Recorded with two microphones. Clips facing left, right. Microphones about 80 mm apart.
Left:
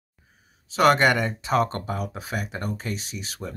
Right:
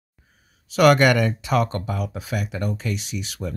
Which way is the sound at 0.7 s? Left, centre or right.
Left.